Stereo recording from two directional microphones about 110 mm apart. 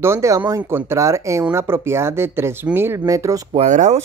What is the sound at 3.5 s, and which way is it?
Speech, 90° right.